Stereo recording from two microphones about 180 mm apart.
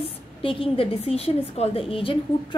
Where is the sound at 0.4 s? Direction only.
30° left (ahead or behind).